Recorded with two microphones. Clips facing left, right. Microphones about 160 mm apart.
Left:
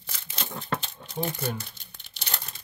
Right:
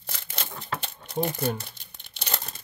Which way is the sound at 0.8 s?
60° right (ahead or behind).